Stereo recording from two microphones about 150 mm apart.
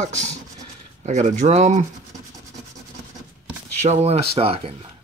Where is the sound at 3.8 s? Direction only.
50° right (ahead or behind).